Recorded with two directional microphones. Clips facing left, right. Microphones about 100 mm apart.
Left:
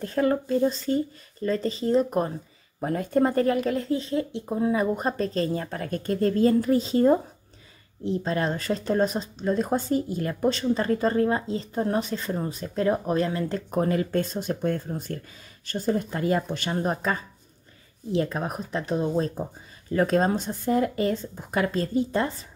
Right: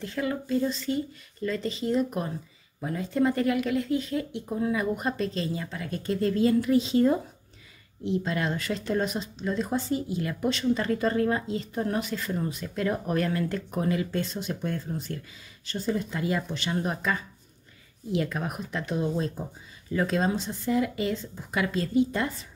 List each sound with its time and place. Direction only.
0.0 s speech: 40° left (ahead or behind)
2.8 s speech: 50° left (ahead or behind)